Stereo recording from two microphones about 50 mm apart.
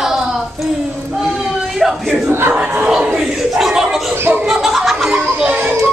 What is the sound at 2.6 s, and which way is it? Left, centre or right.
Speech, right.